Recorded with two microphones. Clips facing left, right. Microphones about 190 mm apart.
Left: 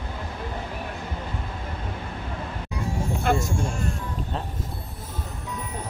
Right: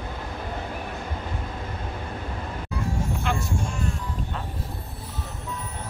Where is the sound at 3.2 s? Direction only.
45° left (ahead or behind).